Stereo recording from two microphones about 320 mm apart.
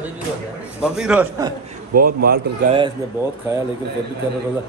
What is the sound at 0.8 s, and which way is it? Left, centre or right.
Speech, centre.